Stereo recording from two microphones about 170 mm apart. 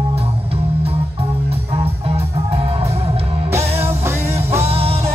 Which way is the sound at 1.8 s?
35° right (ahead or behind).